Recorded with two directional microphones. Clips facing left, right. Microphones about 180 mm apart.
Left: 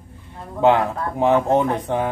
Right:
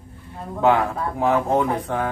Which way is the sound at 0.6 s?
20° left (ahead or behind).